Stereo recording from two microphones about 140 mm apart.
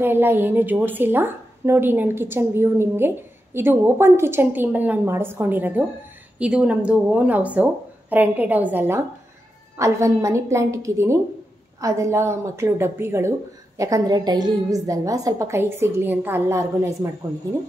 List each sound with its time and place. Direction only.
0.0 s a woman's voice: 15° right (ahead or behind)